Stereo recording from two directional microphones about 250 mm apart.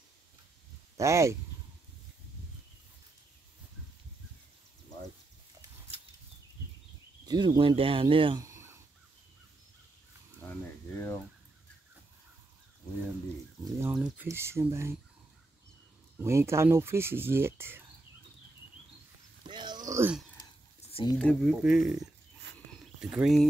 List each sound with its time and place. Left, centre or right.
0.9 s speech: centre
7.2 s speech: centre
13.7 s speech: centre
16.2 s speech: centre
19.4 s a sound: centre
19.9 s speech: centre
20.8 s a sound: left
21.2 s speech: centre